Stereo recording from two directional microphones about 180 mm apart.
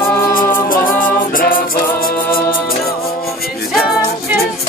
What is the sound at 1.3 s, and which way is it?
Music, 55° left (ahead or behind).